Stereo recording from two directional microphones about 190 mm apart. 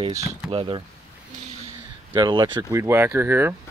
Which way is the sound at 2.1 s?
25° right (ahead or behind).